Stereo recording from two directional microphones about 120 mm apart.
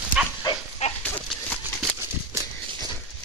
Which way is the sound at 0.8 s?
65° left (ahead or behind).